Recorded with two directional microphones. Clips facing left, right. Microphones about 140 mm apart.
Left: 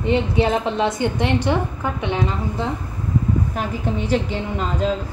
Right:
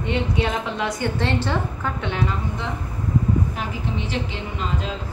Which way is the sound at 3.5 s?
45° left (ahead or behind).